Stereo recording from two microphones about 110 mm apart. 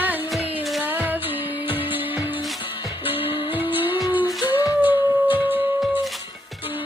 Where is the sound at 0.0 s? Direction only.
15° right (ahead or behind).